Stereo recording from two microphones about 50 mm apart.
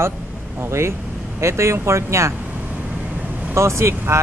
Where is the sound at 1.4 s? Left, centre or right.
Right.